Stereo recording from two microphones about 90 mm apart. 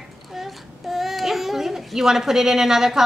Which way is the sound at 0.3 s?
5° right (ahead or behind).